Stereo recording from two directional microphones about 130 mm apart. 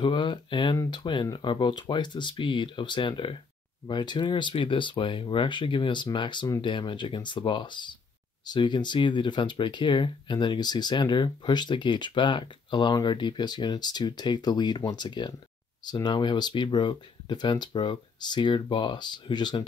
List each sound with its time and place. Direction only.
0.0 s speech: 40° left (ahead or behind)